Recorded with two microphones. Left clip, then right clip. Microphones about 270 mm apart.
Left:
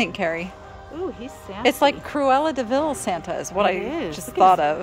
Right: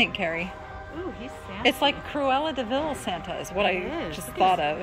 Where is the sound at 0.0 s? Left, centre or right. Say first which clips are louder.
Left 1 dB; centre.